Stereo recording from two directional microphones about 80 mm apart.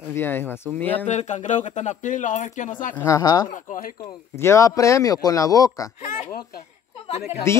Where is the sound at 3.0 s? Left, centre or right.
Left.